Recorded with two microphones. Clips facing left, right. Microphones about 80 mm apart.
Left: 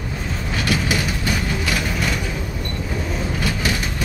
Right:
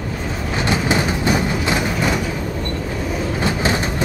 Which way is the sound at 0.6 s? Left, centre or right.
Right.